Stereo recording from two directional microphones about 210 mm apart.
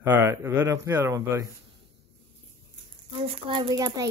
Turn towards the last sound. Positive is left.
turn(degrees=-15)  # may be behind; listen again after turning